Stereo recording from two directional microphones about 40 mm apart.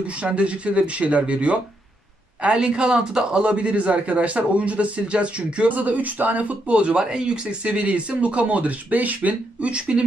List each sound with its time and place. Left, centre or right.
0.0 s speech: right
5.8 s speech: right